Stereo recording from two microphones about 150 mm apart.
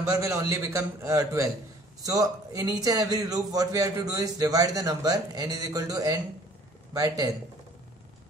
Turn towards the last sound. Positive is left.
turn(degrees=-25)  # may be behind; listen again after turning